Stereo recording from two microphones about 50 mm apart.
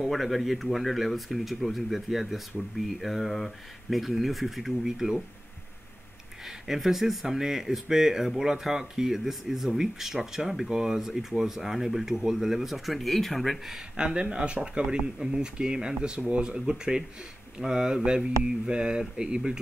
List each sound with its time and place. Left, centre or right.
0.0 s speech: centre
6.4 s speech: centre
13.7 s speech: centre